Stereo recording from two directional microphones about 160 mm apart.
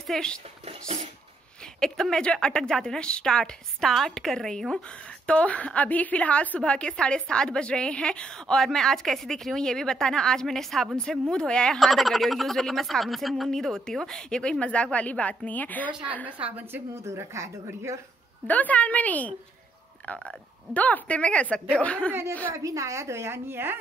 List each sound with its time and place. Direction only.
0.0 s a woman's voice: 5° left (ahead or behind)
0.7 s a sound: 45° right (ahead or behind)
1.8 s a woman's voice: 5° left (ahead or behind)
16.4 s a woman's voice: 10° right (ahead or behind)
18.5 s a woman's voice: 10° left (ahead or behind)
22.5 s a woman's voice: 20° right (ahead or behind)